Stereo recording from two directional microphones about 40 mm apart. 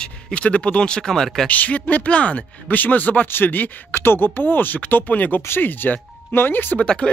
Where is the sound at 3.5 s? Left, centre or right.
Left.